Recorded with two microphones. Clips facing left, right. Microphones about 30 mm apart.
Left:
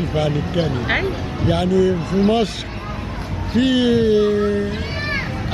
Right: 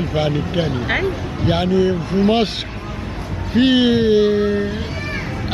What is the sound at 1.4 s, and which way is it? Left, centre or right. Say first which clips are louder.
Speech: even; right.